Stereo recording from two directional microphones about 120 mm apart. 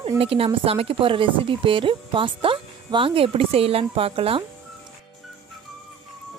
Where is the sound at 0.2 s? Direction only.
50° right (ahead or behind).